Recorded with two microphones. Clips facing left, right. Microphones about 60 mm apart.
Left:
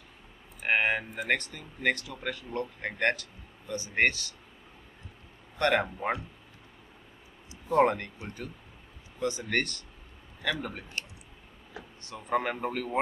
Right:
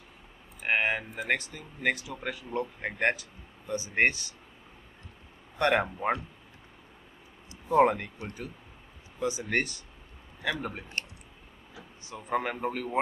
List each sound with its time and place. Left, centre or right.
0.6 s speech: centre; by 4.4 s right
5.6 s speech: centre
5.9 s speech: centre
7.6 s speech: centre
9.2 s speech: centre
12.0 s speech: centre